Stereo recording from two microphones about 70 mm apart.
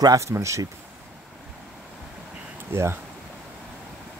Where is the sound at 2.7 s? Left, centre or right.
Right.